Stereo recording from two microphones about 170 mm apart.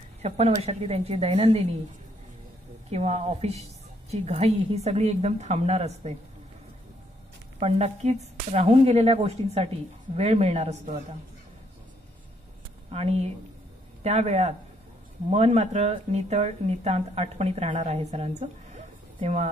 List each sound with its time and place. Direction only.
0.2 s speech: 35° right (ahead or behind)
2.9 s speech: 40° right (ahead or behind)
7.5 s speech: 40° right (ahead or behind)
12.9 s speech: 35° right (ahead or behind)